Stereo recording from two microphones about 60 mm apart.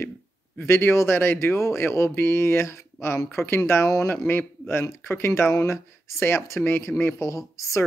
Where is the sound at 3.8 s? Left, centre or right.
Left.